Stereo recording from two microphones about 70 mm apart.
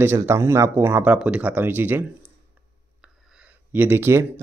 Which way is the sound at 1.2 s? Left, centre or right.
Centre.